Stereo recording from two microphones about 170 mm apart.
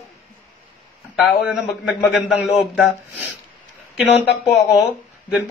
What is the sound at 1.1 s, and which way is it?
A man's voice, centre (ahead or behind).